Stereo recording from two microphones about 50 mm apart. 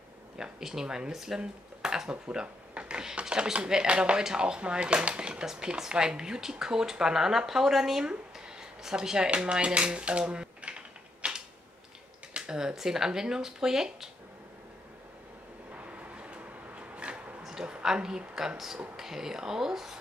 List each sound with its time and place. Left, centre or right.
0.4 s speech: centre
11.2 s creak: right
12.4 s speech: centre
15.7 s vehicle: right
16.9 s a sound: right
17.4 s a sound: centre
17.6 s speech: centre